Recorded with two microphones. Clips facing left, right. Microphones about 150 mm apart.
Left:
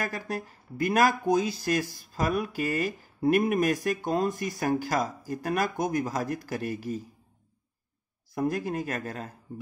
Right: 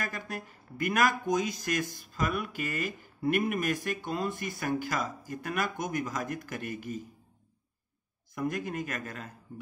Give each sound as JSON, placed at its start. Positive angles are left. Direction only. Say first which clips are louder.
{"t": 0.0, "sound": "speech", "louder": "left 5 dB", "side_deg": 35}
{"t": 8.4, "sound": "speech", "louder": "left 4 dB", "side_deg": 35}